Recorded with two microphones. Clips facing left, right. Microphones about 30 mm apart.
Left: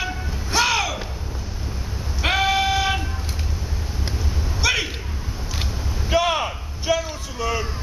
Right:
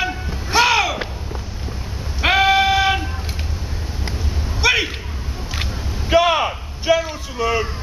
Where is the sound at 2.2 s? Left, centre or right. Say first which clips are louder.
Right 5 dB; centre.